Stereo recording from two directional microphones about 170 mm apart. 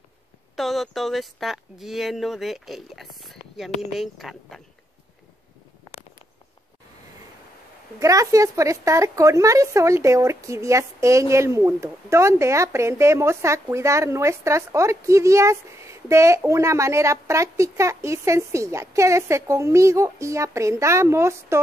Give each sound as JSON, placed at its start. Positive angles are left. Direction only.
{"t": 0.6, "sound": "speech", "side_deg": 0}
{"t": 8.0, "sound": "a woman's voice", "side_deg": -20}